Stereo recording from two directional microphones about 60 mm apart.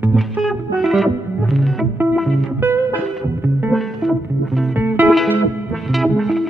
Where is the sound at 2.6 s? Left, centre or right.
Right.